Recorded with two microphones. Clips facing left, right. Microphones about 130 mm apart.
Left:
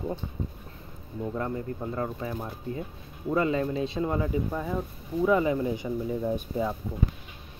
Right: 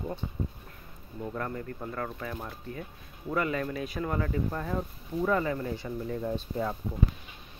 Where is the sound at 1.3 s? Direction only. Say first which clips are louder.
Left 4 dB; 20° left (ahead or behind).